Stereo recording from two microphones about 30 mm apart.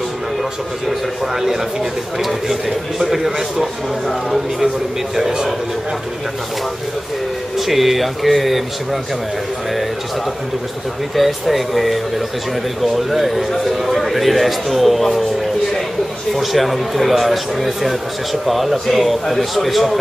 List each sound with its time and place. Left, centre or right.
0.8 s speech: centre
5.1 s a man's voice: centre
7.5 s a man's voice: centre
11.1 s a man's voice: centre
16.3 s a man's voice: centre